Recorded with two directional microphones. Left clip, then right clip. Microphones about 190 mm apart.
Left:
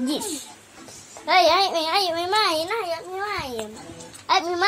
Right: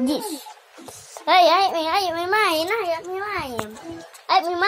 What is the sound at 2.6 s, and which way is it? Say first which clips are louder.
Speech: right 3 dB; 40° right (ahead or behind).